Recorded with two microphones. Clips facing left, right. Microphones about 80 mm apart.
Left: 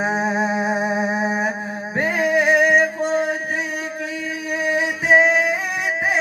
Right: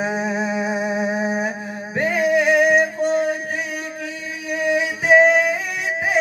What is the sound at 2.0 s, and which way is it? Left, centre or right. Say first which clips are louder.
Music: right 1 dB; left.